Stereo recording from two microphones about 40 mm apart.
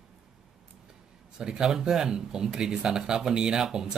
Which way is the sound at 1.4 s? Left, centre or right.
Centre.